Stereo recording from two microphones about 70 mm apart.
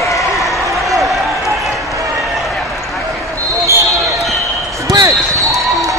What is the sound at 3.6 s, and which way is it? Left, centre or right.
Basketball bounce, right.